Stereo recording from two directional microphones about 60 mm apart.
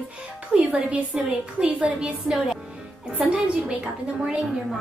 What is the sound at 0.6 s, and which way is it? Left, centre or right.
A woman's voice, right.